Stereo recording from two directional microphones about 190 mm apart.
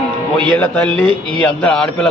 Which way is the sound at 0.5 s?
10° left (ahead or behind).